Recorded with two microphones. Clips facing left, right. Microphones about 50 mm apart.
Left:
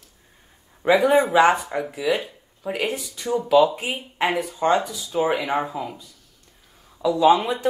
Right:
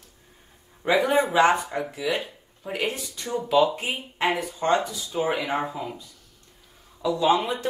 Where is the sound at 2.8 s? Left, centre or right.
Left.